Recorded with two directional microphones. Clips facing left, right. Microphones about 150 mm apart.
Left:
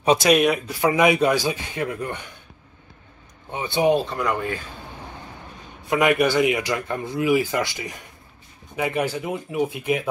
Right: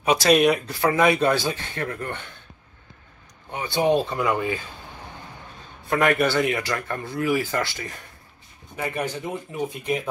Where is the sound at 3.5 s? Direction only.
20° left (ahead or behind).